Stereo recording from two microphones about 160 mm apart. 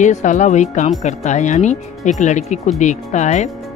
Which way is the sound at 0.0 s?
50° left (ahead or behind).